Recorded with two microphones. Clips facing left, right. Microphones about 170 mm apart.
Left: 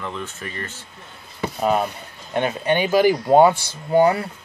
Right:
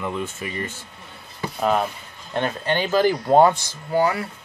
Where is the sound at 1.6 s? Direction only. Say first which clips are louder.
Left 1 dB; 5° left (ahead or behind).